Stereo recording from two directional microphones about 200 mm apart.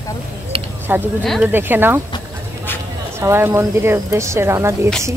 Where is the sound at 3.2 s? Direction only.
15° right (ahead or behind).